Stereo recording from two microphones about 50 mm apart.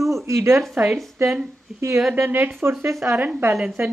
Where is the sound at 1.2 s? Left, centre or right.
Right.